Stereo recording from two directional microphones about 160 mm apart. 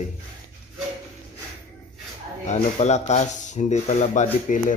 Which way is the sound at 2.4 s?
45° left (ahead or behind).